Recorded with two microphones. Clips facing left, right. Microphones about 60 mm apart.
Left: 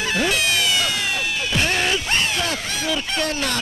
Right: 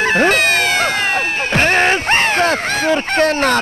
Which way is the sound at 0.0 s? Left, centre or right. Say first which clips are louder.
Right 8 dB; right.